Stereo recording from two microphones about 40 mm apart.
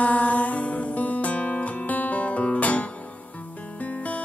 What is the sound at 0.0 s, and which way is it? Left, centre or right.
Music, left.